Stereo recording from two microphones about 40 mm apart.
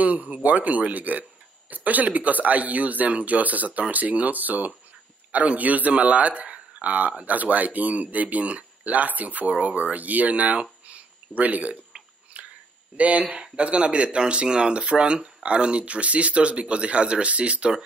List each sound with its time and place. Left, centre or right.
0.0 s speech: right
12.4 s a sound: right
12.9 s speech: right
13.4 s speech: right